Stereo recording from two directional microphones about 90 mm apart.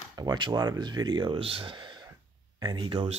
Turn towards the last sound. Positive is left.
turn(degrees=-65)  # may be behind; listen again after turning